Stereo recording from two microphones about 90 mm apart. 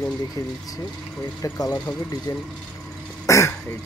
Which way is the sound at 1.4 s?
45° left (ahead or behind).